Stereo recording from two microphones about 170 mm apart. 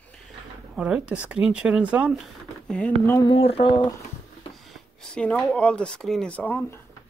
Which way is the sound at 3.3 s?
35° left (ahead or behind).